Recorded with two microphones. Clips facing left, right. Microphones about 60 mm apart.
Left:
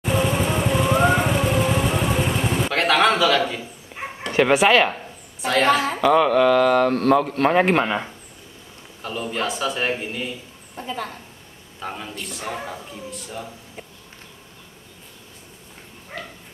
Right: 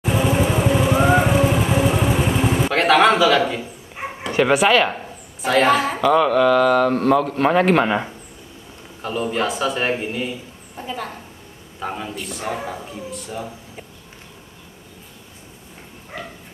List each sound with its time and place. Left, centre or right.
0.0 s vehicle: centre
4.2 s a woman's voice: centre
6.9 s speech: centre
7.7 s a man's voice: centre
16.1 s dog: centre